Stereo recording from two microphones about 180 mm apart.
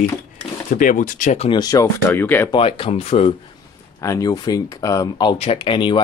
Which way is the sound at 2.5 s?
30° left (ahead or behind).